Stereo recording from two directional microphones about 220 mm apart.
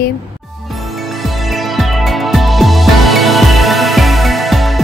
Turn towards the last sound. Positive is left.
turn(degrees=0)  # may be behind; listen again after turning